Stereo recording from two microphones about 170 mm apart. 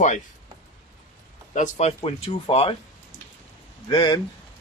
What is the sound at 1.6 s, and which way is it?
Speech, 40° left (ahead or behind).